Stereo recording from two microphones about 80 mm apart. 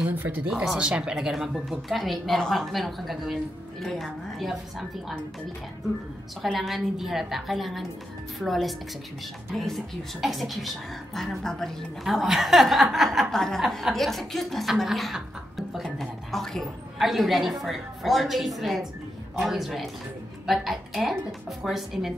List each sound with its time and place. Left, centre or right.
0.1 s speech: right
0.5 s a woman's voice: centre
6.4 s a woman's voice: centre